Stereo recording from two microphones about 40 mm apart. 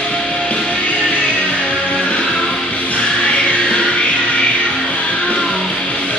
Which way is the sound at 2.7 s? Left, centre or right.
Left.